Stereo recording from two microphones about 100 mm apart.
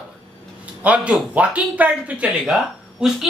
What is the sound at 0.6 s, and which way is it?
Speech, 15° right (ahead or behind).